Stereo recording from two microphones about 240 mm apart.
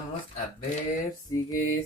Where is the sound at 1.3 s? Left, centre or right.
Centre.